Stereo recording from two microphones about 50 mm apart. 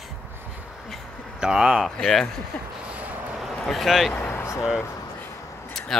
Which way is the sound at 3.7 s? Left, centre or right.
Centre.